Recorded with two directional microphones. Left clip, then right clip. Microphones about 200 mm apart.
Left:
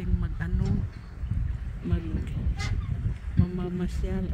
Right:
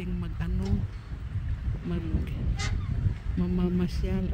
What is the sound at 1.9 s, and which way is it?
Speech, 10° right (ahead or behind).